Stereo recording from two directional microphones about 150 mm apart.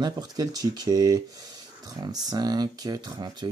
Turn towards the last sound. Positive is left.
turn(degrees=-25)  # may be behind; listen again after turning